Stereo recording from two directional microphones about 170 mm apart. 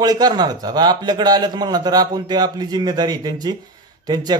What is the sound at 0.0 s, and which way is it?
A man's voice, 25° right (ahead or behind).